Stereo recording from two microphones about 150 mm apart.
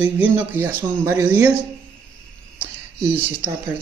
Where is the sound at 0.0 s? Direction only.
15° right (ahead or behind).